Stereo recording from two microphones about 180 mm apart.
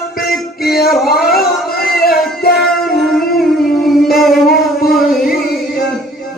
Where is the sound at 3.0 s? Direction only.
Centre (ahead or behind).